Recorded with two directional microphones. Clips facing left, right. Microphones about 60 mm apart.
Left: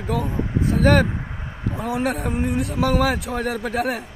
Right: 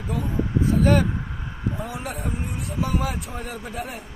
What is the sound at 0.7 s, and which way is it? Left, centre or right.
Speech, left.